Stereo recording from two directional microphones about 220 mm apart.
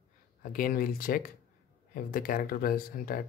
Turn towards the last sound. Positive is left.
turn(degrees=40)  # may be behind; listen again after turning